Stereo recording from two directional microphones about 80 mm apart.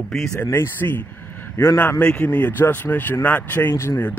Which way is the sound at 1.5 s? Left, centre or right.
Left.